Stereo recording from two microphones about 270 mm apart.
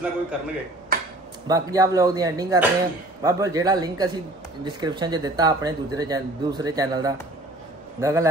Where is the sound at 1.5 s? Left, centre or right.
Centre.